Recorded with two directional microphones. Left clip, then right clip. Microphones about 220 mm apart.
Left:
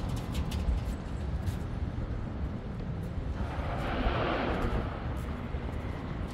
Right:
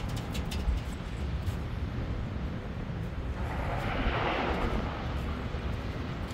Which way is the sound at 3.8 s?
35° left (ahead or behind).